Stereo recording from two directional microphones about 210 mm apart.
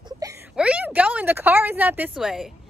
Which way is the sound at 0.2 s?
15° right (ahead or behind).